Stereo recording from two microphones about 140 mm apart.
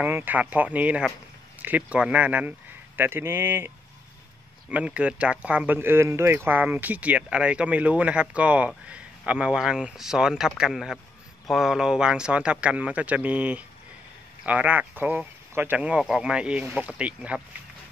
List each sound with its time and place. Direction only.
0.0 s speech: 15° right (ahead or behind)